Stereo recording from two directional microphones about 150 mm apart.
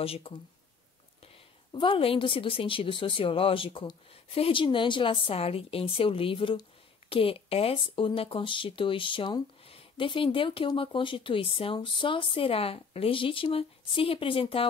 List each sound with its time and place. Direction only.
0.0 s speech: 40° left (ahead or behind)